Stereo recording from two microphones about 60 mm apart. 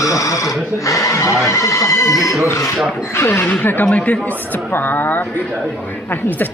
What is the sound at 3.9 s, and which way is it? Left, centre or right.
Speech, left.